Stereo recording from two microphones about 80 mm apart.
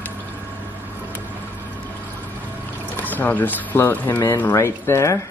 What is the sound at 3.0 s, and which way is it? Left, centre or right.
Speech, left.